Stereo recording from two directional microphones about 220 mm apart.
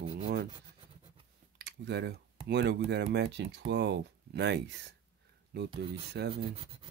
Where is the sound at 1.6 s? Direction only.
50° right (ahead or behind).